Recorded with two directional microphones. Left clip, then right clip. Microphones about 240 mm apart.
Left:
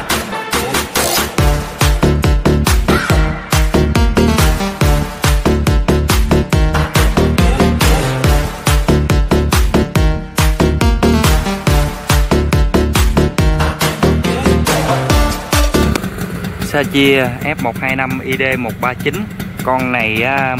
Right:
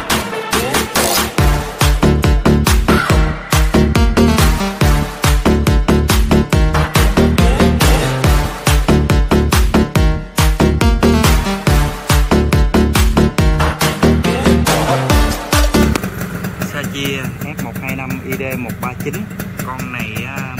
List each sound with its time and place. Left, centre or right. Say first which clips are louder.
0.5 s music: right 1 dB; centre
16.9 s speech: left 10 dB; centre
19.7 s speech: left 12 dB; centre